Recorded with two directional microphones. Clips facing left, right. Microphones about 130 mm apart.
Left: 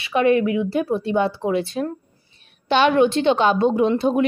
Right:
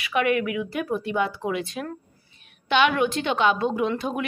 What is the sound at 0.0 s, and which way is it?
A woman's voice, 30° left (ahead or behind).